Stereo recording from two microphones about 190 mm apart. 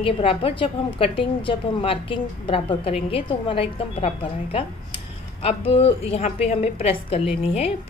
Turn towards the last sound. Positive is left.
turn(degrees=30)  # may be behind; listen again after turning